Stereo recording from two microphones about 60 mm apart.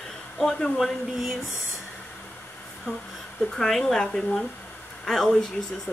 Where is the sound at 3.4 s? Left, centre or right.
Centre.